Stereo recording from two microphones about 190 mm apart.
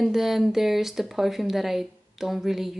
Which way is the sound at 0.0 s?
Centre (ahead or behind).